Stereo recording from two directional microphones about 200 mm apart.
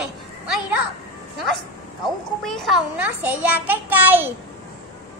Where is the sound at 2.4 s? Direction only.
Centre (ahead or behind).